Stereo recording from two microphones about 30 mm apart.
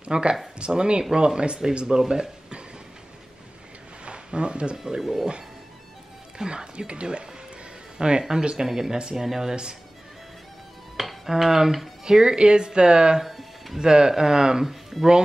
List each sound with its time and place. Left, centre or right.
0.0 s speech: right
4.0 s a sound: right
6.3 s speech: right
8.6 s dishes: centre
11.2 s dishes: centre
12.0 s speech: right
13.2 s music: centre
13.7 s speech: right
14.7 s speech: centre